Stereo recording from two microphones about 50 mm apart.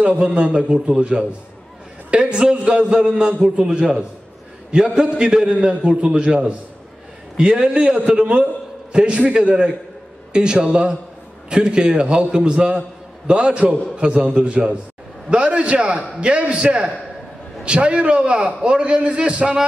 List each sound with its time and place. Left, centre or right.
0.0 s a man's voice: right